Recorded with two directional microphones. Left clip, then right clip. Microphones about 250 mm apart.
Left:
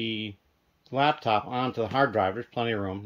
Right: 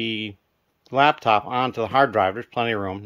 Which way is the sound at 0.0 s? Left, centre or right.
Centre.